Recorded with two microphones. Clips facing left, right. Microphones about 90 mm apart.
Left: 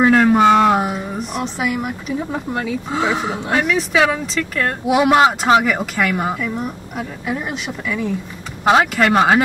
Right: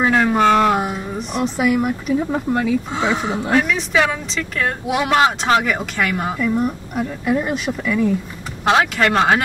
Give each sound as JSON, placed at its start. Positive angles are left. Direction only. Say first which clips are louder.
{"t": 0.0, "sound": "a woman's voice", "louder": "left 3 dB", "side_deg": 0}